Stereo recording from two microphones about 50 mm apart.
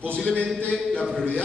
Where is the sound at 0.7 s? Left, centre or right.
Centre.